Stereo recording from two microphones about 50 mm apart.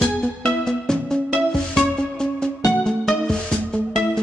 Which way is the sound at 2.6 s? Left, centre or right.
Centre.